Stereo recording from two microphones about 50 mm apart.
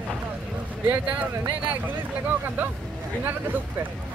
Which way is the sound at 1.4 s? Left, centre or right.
Right.